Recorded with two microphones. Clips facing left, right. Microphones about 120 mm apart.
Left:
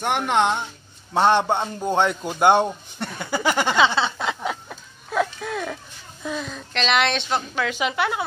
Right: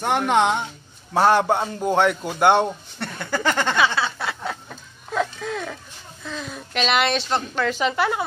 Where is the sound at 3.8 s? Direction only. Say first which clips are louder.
Left 2 dB; 25° left (ahead or behind).